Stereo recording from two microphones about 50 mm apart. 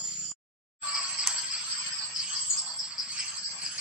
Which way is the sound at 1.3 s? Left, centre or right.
Centre.